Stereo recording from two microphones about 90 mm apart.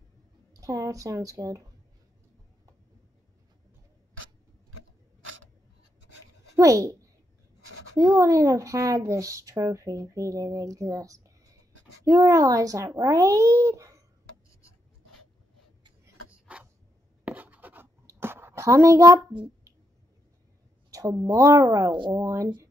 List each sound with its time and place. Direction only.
0.5 s speech: 40° right (ahead or behind)
6.5 s a child's voice: 35° right (ahead or behind)
16.3 s a sound: 15° right (ahead or behind)
17.2 s writing: 15° right (ahead or behind)
18.2 s a sound: 25° right (ahead or behind)
20.9 s speech: 35° right (ahead or behind)